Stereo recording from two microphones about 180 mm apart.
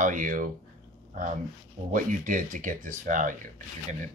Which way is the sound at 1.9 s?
45° right (ahead or behind).